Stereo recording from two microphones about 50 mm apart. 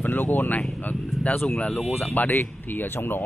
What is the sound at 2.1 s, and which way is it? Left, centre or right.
Speech, left.